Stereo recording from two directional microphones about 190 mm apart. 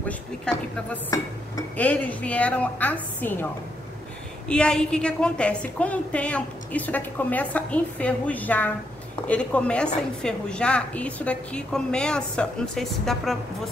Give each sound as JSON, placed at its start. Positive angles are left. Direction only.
{"t": 0.1, "sound": "a woman's voice", "side_deg": 10}
{"t": 4.5, "sound": "a woman's voice", "side_deg": 5}